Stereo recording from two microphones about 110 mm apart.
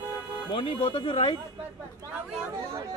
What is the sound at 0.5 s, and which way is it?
Speech, 55° left (ahead or behind).